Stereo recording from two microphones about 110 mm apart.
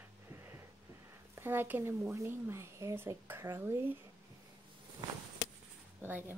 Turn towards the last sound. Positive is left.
turn(degrees=-20)  # may be behind; listen again after turning